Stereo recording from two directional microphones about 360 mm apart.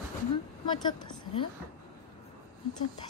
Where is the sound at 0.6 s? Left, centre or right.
Centre.